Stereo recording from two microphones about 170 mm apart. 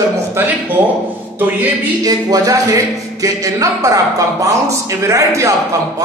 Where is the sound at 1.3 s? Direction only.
10° right (ahead or behind).